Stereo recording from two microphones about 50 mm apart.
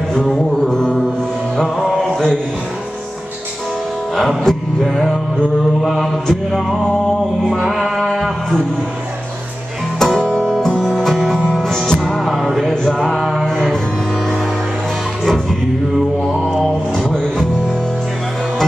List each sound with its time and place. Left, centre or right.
0.1 s music: centre
1.6 s music: centre
2.0 s mantra: centre
4.2 s music: centre
5.8 s mantra: centre
7.4 s mantra: centre
9.9 s music: centre
13.5 s music: centre
16.4 s mantra: centre